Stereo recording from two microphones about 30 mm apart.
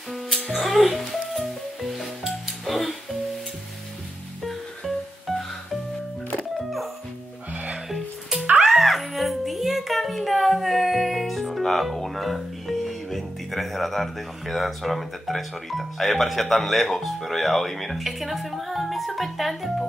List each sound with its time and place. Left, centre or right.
0.5 s music: centre
4.4 s music: centre
7.5 s music: right
7.9 s music: centre
11.7 s speech: centre